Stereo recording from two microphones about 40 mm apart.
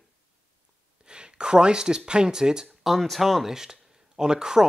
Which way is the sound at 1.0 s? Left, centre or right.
Right.